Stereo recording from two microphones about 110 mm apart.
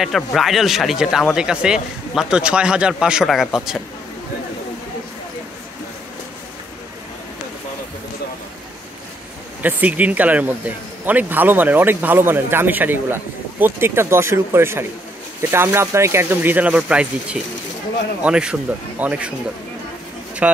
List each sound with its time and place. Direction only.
0.0 s a man's voice: centre (ahead or behind)
9.6 s a man's voice: 15° right (ahead or behind)
20.4 s speech: 10° right (ahead or behind)